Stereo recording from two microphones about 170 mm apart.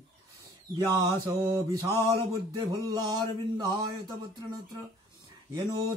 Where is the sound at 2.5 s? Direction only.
25° right (ahead or behind).